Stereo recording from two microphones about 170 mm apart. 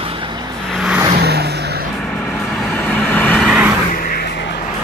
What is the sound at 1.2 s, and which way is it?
Vehicle, 70° right (ahead or behind).